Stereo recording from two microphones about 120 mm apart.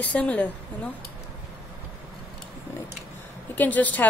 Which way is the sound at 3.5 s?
15° left (ahead or behind).